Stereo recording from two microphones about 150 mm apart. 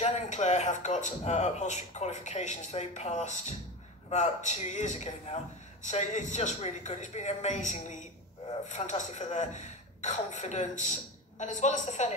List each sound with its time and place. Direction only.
0.0 s speech: 50° left (ahead or behind)